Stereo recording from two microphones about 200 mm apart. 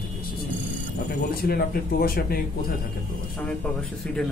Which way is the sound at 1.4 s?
50° left (ahead or behind).